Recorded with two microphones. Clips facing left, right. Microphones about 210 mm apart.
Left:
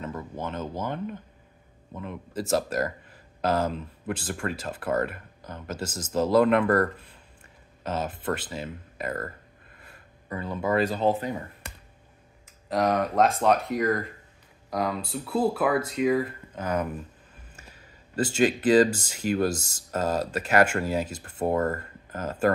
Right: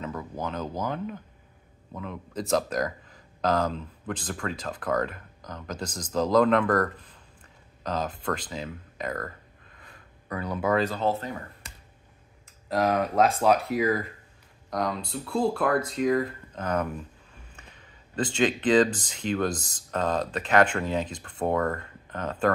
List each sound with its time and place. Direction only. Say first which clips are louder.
0.8 s speech: even; centre (ahead or behind)
10.4 s speech: right 1 dB; centre (ahead or behind)
10.8 s speech: left 2 dB; 15° left (ahead or behind)
11.6 s a sound: left 6 dB; 60° left (ahead or behind)
12.6 s speech: even; centre (ahead or behind)